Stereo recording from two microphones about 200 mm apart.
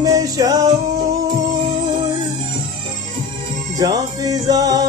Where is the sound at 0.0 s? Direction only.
20° right (ahead or behind).